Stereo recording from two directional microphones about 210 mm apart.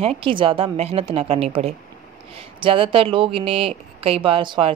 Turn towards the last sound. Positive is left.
turn(degrees=-25)  # may be behind; listen again after turning